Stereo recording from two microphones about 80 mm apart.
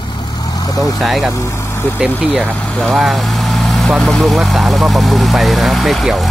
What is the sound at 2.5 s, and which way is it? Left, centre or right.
Speech, centre.